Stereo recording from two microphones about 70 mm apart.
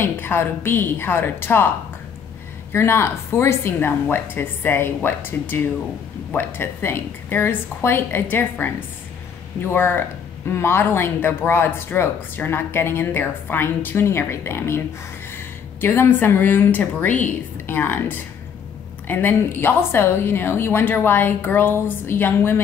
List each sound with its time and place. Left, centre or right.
0.0 s speech: left
2.7 s speech: left